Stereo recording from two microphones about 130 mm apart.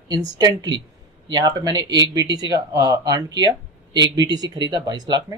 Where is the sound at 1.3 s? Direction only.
30° right (ahead or behind).